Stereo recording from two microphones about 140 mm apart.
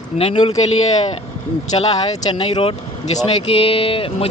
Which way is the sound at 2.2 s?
35° left (ahead or behind).